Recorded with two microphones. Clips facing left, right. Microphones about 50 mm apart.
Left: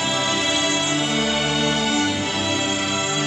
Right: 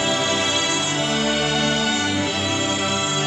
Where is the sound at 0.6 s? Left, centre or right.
Left.